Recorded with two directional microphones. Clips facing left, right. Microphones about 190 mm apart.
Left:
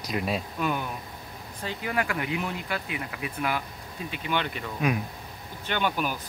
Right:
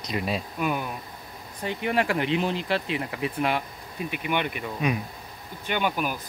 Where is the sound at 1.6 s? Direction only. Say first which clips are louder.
Right 4 dB; 20° right (ahead or behind).